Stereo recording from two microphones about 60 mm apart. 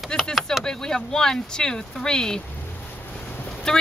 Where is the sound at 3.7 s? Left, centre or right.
Centre.